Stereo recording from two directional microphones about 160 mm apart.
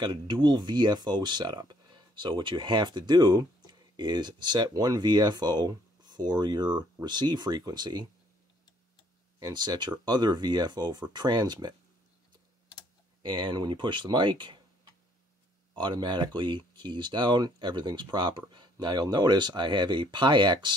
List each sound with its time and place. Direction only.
0.0 s speech: 30° right (ahead or behind)
9.4 s speech: 25° right (ahead or behind)
13.2 s speech: 30° right (ahead or behind)
15.7 s speech: 30° right (ahead or behind)